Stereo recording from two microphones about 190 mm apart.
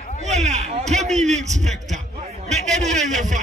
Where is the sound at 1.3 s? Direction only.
40° right (ahead or behind).